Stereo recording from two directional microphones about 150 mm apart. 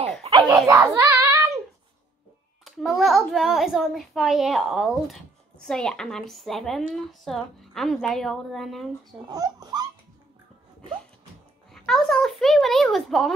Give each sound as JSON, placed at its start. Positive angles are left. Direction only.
{"t": 0.2, "sound": "a sound", "side_deg": -30}
{"t": 0.9, "sound": "child singing", "side_deg": -20}
{"t": 2.6, "sound": "speech", "side_deg": 0}
{"t": 9.3, "sound": "speech", "side_deg": -25}
{"t": 11.7, "sound": "a child's voice", "side_deg": 5}